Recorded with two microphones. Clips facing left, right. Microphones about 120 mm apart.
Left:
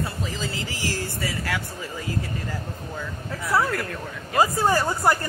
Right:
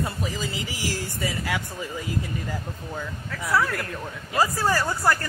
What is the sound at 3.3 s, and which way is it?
Speech, 25° left (ahead or behind).